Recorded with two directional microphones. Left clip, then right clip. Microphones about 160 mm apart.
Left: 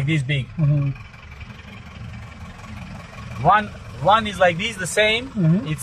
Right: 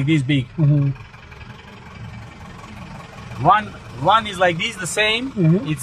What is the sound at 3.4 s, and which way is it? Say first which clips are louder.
A man's voice: right 1 dB; 5° right (ahead or behind).